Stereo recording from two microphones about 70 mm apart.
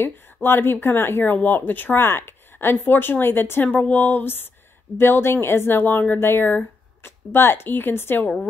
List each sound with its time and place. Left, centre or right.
0.0 s speech: left